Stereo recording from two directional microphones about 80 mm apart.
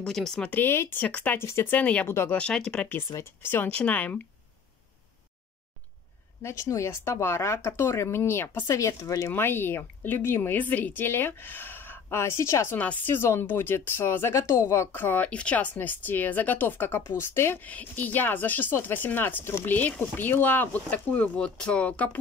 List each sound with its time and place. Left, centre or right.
0.0 s speech: centre
0.5 s speech: left
1.0 s speech: centre
1.4 s speech: left
1.7 s speech: centre
2.0 s speech: left
2.3 s speech: centre
3.2 s speech: left
6.4 s speech: left
9.3 s speech: left
12.7 s speech: left
17.6 s speech: centre